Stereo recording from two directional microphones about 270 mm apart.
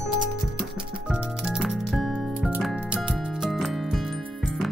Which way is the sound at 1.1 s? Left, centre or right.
Centre.